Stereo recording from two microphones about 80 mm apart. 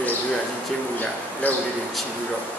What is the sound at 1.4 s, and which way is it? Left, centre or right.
Speech, left.